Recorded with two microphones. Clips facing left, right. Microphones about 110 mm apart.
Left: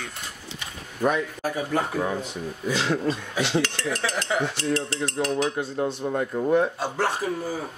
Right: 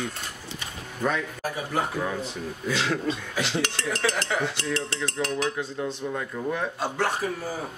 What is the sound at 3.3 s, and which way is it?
Speech, 15° left (ahead or behind).